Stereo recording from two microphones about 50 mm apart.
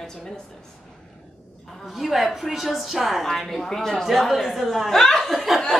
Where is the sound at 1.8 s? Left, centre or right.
Centre.